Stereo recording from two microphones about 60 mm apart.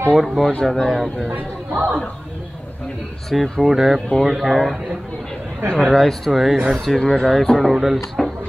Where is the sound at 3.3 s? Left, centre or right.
Centre.